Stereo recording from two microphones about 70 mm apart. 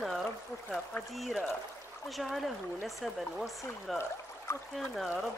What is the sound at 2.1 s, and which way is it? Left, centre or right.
Speech, centre.